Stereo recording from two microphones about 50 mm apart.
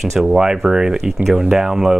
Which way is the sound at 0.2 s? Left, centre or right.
Centre.